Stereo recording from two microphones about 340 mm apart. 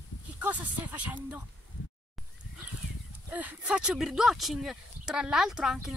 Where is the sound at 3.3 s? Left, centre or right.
Centre.